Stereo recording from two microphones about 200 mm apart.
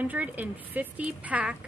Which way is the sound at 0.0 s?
10° right (ahead or behind).